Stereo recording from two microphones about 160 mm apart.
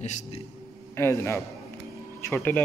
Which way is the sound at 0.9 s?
15° left (ahead or behind).